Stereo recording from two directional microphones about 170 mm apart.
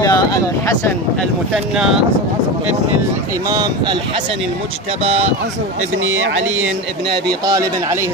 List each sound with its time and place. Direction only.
0.0 s speech: 20° left (ahead or behind)
1.5 s speech: 5° right (ahead or behind)
3.4 s speech: 20° right (ahead or behind)
5.0 s speech: 35° right (ahead or behind)
7.1 s speech: 25° right (ahead or behind)